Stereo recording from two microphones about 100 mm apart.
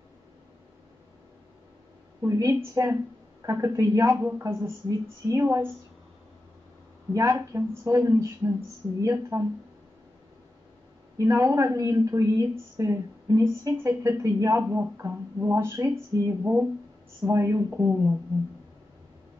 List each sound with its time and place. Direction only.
2.2 s a woman's voice: 30° right (ahead or behind)
7.2 s a woman's voice: 30° right (ahead or behind)
11.1 s a woman's voice: 30° right (ahead or behind)